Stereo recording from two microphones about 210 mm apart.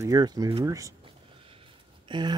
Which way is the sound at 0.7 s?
15° right (ahead or behind).